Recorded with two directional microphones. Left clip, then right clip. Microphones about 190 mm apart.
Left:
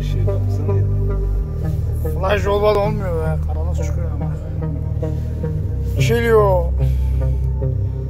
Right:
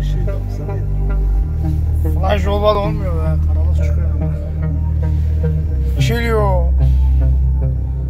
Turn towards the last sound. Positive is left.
turn(degrees=15)  # may be behind; listen again after turning